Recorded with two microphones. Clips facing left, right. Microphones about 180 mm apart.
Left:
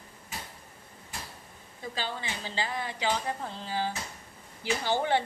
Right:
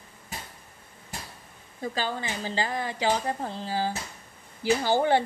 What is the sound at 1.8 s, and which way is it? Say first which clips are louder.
A woman's voice: right 5 dB; 45° right (ahead or behind).